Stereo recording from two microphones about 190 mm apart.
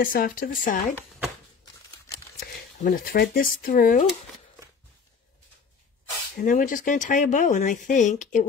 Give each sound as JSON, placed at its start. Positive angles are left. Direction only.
{"t": 0.0, "sound": "speech", "side_deg": 50}
{"t": 2.8, "sound": "speech", "side_deg": 50}
{"t": 6.3, "sound": "speech", "side_deg": 45}